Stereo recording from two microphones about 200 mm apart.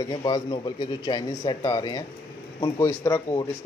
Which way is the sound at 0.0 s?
15° left (ahead or behind).